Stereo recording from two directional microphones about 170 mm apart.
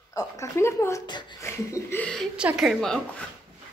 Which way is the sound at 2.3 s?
5° right (ahead or behind).